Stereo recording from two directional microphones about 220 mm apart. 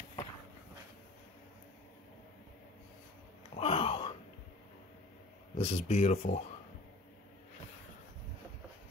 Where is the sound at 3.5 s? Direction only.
25° left (ahead or behind).